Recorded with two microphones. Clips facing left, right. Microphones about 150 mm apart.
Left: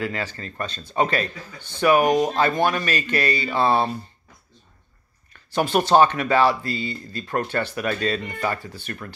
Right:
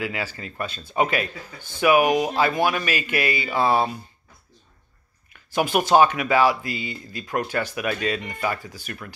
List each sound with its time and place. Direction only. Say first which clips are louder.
0.0 s speech: left 1 dB; 10° right (ahead or behind)
5.3 s speech: left 1 dB; 10° right (ahead or behind)